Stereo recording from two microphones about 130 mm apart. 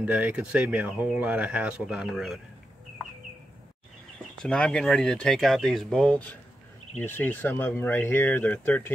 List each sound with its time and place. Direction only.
0.0 s speech: 10° right (ahead or behind)
4.4 s speech: 5° left (ahead or behind)